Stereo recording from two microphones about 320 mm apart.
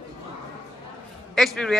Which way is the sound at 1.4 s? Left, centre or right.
Centre.